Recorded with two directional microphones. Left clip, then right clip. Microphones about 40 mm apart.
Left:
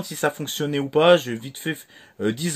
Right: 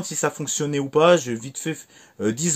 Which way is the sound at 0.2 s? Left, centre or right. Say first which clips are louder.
Left 1 dB; centre.